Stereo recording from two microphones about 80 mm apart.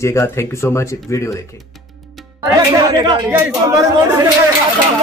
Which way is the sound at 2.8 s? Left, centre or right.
Right.